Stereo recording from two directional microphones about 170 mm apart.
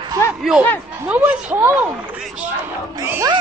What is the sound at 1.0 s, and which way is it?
Speech, 10° right (ahead or behind).